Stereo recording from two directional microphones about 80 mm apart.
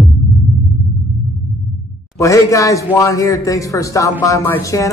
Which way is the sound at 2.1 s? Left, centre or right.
Left.